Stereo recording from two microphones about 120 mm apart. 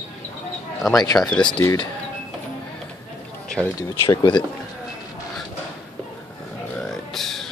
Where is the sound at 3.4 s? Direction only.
10° left (ahead or behind).